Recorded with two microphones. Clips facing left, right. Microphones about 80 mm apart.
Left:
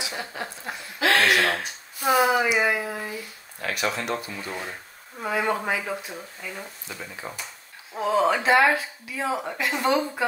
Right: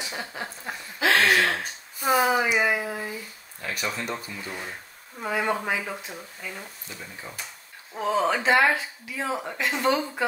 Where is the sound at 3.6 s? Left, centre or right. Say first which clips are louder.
Left 4 dB; left.